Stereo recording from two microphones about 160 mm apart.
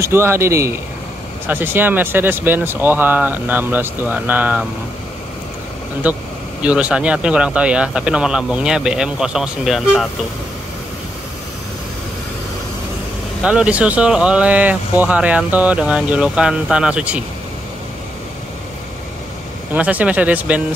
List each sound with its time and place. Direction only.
0.0 s speech: 15° right (ahead or behind)
6.0 s speech: 10° right (ahead or behind)
13.4 s speech: 5° right (ahead or behind)
19.7 s speech: 10° right (ahead or behind)